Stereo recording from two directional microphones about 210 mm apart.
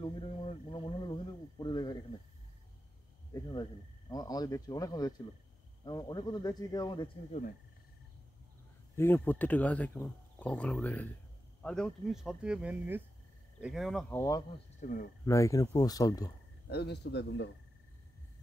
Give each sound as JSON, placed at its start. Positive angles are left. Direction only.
{"t": 0.0, "sound": "a sound", "side_deg": 25}
{"t": 3.3, "sound": "a sound", "side_deg": 20}
{"t": 4.1, "sound": "speech", "side_deg": 20}
{"t": 8.9, "sound": "speech", "side_deg": 10}
{"t": 14.1, "sound": "speech", "side_deg": 15}
{"t": 14.8, "sound": "speech", "side_deg": 40}
{"t": 15.2, "sound": "speech", "side_deg": 15}
{"t": 16.6, "sound": "speech", "side_deg": 50}